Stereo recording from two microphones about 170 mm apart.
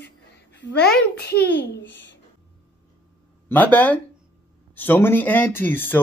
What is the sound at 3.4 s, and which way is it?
Speech, 10° left (ahead or behind).